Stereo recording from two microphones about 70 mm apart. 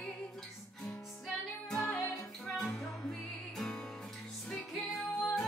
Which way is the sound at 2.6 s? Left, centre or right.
Centre.